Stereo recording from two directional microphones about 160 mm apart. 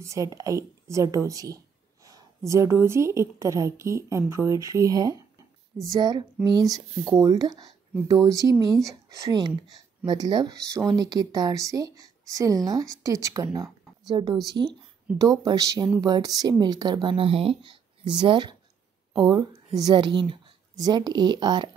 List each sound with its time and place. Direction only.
0.0 s speech: 20° right (ahead or behind)